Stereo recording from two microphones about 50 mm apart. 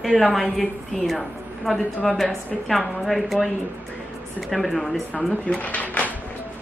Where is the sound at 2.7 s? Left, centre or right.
Centre.